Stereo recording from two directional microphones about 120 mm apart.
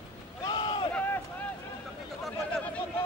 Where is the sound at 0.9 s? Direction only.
15° left (ahead or behind).